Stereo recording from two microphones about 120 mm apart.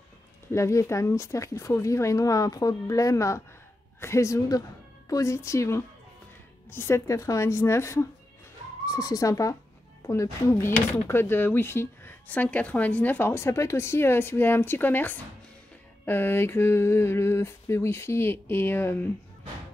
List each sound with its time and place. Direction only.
0.5 s a woman's voice: 25° left (ahead or behind)